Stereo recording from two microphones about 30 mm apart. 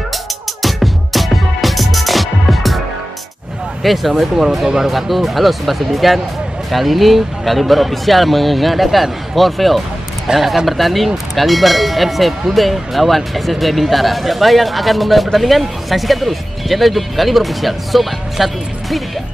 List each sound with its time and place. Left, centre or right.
0.6 s music: centre
3.8 s speech: centre
10.2 s speech: centre